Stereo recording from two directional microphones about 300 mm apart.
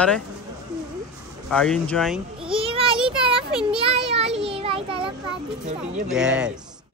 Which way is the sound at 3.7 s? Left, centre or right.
Centre.